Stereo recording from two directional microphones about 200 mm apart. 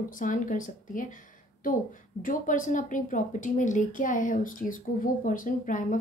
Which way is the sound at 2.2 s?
40° left (ahead or behind).